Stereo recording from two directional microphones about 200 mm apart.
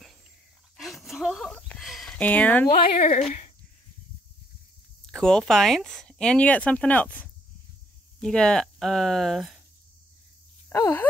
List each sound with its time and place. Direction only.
0.7 s a sound: centre (ahead or behind)
2.9 s speech: 35° left (ahead or behind)
5.1 s speech: centre (ahead or behind)
10.7 s speech: 15° left (ahead or behind)